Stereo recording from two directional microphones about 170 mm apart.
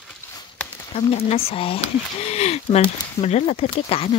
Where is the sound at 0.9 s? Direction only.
35° left (ahead or behind).